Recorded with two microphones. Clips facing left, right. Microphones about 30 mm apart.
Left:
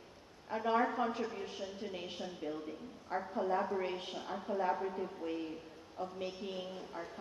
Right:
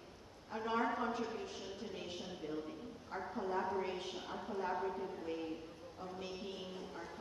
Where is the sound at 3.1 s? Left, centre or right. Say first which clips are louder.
Left 5 dB; left.